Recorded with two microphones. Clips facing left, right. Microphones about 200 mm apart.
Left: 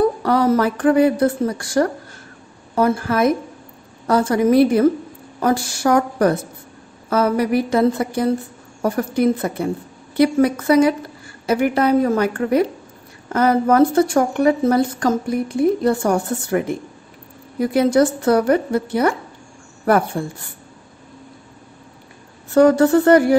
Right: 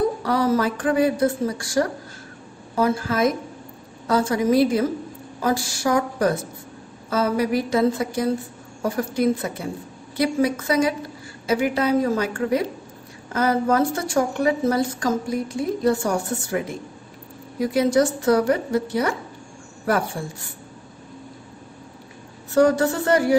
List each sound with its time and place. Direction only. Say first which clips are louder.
0.2 s a woman's voice: left 4 dB; 55° left (ahead or behind)
22.5 s a woman's voice: left 5 dB; 60° left (ahead or behind)